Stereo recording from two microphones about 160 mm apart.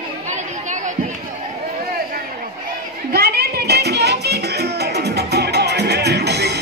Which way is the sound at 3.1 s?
75° right (ahead or behind).